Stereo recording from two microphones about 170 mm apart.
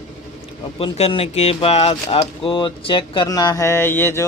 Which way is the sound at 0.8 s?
35° left (ahead or behind).